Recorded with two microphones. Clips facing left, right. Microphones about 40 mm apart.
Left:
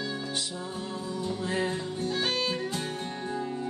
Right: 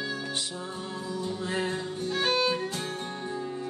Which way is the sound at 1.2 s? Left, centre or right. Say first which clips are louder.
Left 1 dB; right.